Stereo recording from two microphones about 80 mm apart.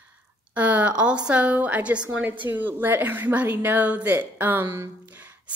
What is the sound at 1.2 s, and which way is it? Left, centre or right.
A woman's voice, centre.